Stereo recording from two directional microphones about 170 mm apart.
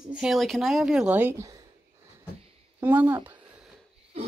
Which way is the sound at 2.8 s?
10° right (ahead or behind).